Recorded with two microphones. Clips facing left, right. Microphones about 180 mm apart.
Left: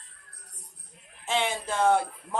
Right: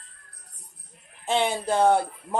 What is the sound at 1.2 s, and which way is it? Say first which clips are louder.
Speech: right 4 dB; 35° right (ahead or behind).